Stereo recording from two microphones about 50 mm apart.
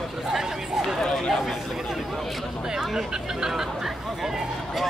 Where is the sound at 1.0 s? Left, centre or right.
Centre.